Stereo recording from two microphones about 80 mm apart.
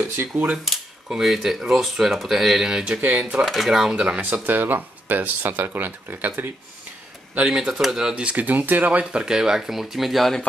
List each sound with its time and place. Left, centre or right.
0.0 s speech: right
1.0 s speech: centre
3.0 s speech: right
3.4 s speech: centre
4.3 s speech: right
7.3 s speech: centre